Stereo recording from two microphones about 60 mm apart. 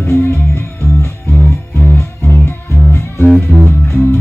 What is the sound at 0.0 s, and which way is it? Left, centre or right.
Music, left.